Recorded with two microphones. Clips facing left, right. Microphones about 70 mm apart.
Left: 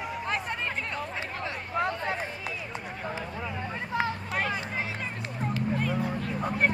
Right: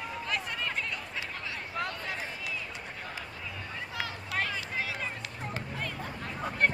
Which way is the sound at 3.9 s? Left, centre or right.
Left.